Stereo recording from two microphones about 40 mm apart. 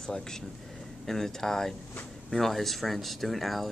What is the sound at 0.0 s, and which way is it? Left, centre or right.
A woman's voice, centre.